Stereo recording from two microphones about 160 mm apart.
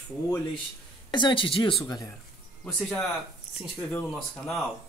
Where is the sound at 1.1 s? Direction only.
30° left (ahead or behind).